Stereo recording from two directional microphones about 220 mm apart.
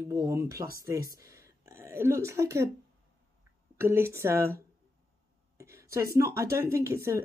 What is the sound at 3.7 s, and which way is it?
Speech, 10° right (ahead or behind).